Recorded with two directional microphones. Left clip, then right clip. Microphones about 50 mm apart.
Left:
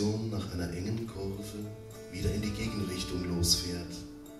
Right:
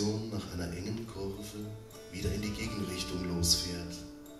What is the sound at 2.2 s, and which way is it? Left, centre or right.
Music, right.